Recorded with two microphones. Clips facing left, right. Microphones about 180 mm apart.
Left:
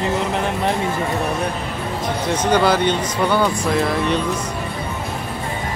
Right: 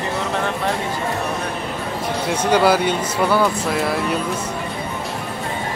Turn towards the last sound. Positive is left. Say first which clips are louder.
# left 2 dB
turn(degrees=-5)  # may be behind; listen again after turning